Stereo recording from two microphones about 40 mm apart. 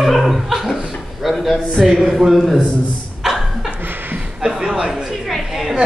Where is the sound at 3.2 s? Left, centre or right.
Centre.